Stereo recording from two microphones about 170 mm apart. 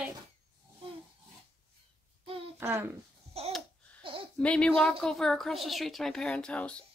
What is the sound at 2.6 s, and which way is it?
Speech, 15° right (ahead or behind).